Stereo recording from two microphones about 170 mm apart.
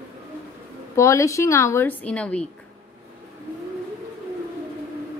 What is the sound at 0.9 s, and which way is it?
A woman's voice, 15° left (ahead or behind).